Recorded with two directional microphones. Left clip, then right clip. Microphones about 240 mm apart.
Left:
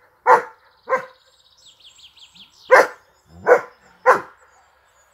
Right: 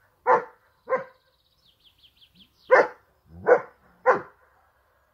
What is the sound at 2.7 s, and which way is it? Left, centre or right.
Dog, centre.